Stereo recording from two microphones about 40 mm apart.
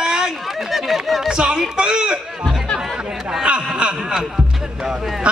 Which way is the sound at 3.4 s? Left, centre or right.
Right.